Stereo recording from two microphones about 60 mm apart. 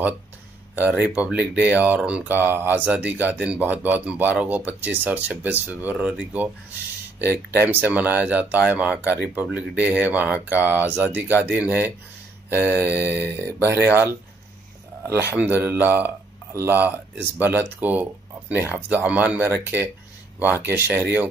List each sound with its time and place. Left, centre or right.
0.7 s speech: right
2.2 s speech: right
12.4 s a sound: right
12.8 s speech: right